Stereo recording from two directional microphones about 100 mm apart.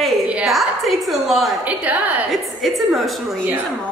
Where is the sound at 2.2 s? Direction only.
Centre (ahead or behind).